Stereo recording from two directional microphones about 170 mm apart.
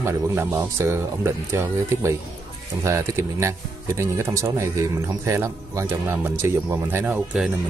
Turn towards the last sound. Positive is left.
turn(degrees=-10)  # may be behind; listen again after turning